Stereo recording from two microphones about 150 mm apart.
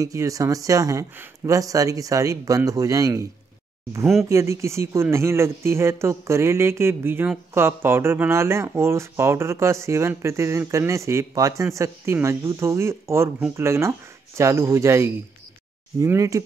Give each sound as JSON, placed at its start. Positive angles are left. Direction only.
{"t": 0.0, "sound": "speech", "side_deg": -20}
{"t": 4.3, "sound": "speech", "side_deg": -20}